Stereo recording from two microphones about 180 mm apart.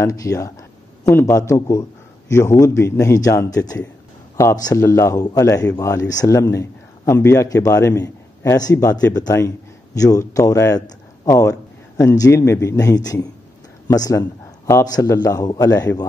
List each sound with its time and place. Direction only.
0.0 s a man's voice: 20° left (ahead or behind)